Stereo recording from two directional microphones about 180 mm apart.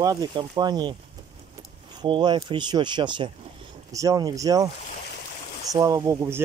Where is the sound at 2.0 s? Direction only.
25° right (ahead or behind).